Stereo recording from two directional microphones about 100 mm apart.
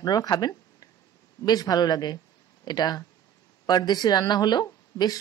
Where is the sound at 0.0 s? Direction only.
45° left (ahead or behind).